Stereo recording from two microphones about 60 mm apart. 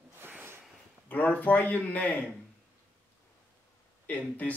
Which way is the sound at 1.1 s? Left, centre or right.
Left.